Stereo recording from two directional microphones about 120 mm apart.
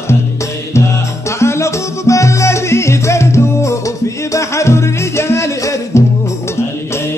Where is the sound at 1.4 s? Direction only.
25° left (ahead or behind).